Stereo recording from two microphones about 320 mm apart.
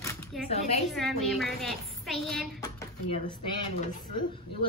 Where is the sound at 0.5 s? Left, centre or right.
Centre.